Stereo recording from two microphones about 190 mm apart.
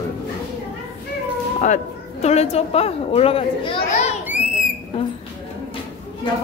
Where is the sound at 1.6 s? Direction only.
35° left (ahead or behind).